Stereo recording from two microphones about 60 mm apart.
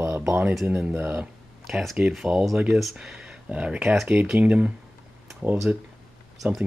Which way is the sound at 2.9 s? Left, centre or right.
Centre.